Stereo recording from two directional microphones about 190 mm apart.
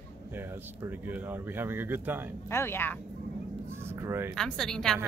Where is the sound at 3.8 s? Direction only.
15° right (ahead or behind).